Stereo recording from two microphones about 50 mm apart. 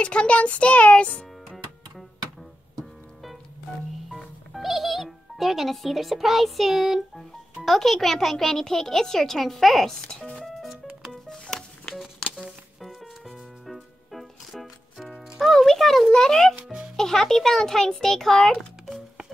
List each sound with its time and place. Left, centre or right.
0.0 s a child's voice: left
2.8 s music: centre
4.6 s speech: centre
10.4 s music: centre
11.9 s music: centre
16.1 s a child's voice: centre